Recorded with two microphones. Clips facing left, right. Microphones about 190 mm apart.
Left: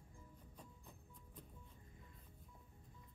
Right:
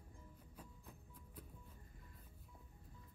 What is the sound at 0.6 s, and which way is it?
Music, 5° right (ahead or behind).